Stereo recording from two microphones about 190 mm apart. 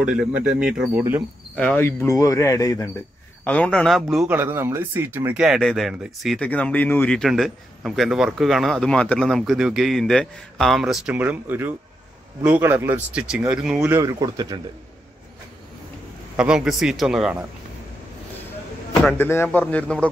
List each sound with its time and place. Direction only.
0.0 s speech: 5° right (ahead or behind)
1.5 s speech: 5° left (ahead or behind)
3.4 s speech: 5° left (ahead or behind)
4.4 s speech: 15° right (ahead or behind)
13.7 s speech: 15° right (ahead or behind)
16.3 s speech: 5° right (ahead or behind)
19.0 s speech: 10° left (ahead or behind)